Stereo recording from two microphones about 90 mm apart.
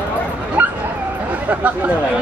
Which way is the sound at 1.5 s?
15° right (ahead or behind).